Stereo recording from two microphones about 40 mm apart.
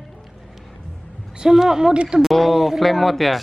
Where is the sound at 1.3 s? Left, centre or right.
Centre.